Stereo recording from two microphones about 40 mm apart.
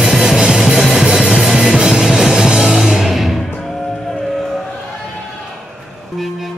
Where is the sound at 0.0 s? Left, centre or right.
Centre.